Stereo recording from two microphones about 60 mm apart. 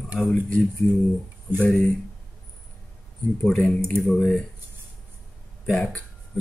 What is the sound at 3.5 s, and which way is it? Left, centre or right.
Speech, centre.